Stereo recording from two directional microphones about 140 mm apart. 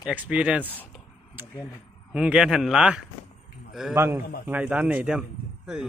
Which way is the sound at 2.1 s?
5° right (ahead or behind).